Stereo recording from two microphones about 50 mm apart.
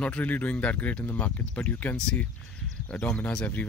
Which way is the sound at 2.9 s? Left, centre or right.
Centre.